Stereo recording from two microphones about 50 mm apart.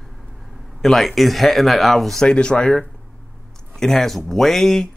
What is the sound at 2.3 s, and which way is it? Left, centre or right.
A man's voice, centre.